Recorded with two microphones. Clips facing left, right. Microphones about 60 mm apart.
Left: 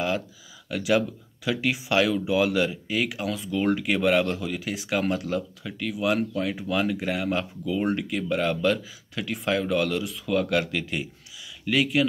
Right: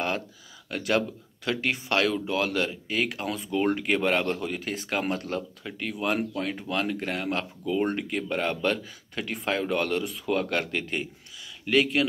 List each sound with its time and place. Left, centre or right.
0.7 s speech: centre